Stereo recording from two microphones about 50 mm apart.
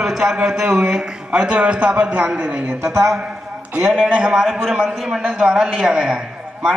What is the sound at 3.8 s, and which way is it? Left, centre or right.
A man's voice, centre.